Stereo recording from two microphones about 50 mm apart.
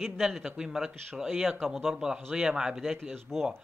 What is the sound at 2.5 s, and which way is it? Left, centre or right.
Speech, centre.